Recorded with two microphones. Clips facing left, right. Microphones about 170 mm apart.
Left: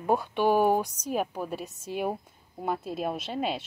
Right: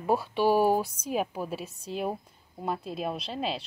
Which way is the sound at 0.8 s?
40° left (ahead or behind).